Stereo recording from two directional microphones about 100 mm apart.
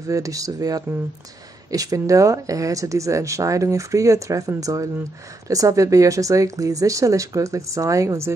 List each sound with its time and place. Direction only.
0.0 s speech: 35° right (ahead or behind)